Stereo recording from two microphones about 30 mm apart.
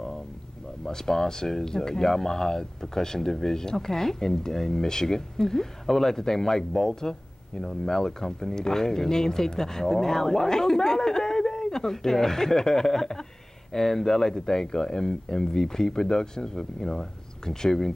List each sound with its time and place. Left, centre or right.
0.8 s speech: centre